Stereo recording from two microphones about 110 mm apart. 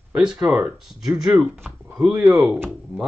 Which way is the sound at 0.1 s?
5° right (ahead or behind).